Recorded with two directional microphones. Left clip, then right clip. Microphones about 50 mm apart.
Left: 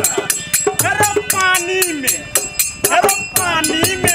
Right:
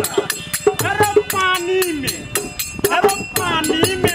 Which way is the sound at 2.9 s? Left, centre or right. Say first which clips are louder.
Left 2 dB; centre.